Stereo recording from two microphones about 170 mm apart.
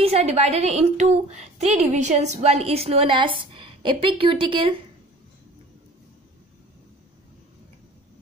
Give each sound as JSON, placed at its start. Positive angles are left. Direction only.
{"t": 0.0, "sound": "a woman's voice", "side_deg": -40}